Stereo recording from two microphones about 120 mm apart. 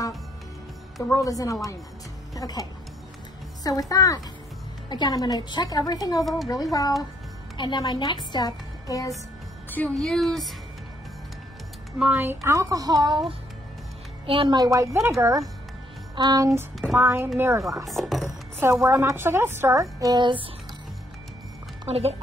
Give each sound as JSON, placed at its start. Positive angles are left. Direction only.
{"t": 1.1, "sound": "a woman's voice", "side_deg": 30}
{"t": 6.2, "sound": "speech", "side_deg": 0}
{"t": 6.5, "sound": "a woman's voice", "side_deg": 30}
{"t": 9.7, "sound": "music", "side_deg": 15}
{"t": 9.9, "sound": "speech", "side_deg": 5}
{"t": 12.0, "sound": "a woman's voice", "side_deg": -20}
{"t": 14.2, "sound": "a woman's voice", "side_deg": -45}
{"t": 14.6, "sound": "a woman's voice", "side_deg": -30}
{"t": 17.8, "sound": "speech", "side_deg": 0}
{"t": 18.6, "sound": "a woman's voice", "side_deg": -20}
{"t": 21.8, "sound": "speech", "side_deg": -60}